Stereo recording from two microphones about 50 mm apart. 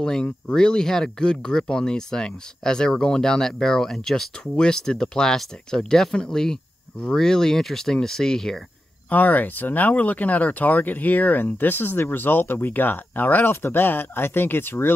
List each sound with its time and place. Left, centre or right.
0.0 s speech: centre
9.1 s speech: left
13.5 s speech: left